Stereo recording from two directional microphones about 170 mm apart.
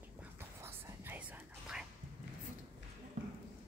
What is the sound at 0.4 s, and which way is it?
Whispering, 15° right (ahead or behind).